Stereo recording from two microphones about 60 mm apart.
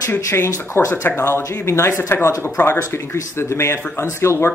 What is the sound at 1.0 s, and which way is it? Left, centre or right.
Speech, left.